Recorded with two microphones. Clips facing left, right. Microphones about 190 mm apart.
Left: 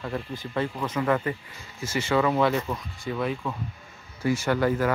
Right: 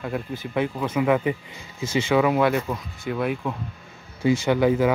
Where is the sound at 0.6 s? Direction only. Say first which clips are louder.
Right 4 dB; 10° right (ahead or behind).